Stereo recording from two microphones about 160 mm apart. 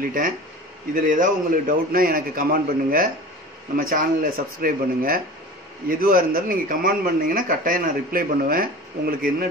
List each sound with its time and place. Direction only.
1.0 s a man's voice: 55° right (ahead or behind)